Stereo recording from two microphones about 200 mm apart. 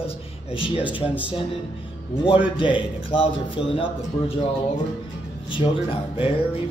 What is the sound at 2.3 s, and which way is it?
Mantra, 25° left (ahead or behind).